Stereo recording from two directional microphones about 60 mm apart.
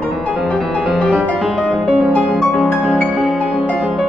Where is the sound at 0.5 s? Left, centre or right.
Centre.